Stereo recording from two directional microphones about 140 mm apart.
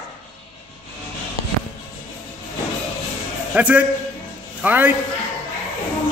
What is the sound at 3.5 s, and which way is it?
A man's voice, 10° right (ahead or behind).